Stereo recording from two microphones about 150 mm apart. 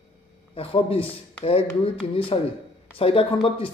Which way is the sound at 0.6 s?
40° left (ahead or behind).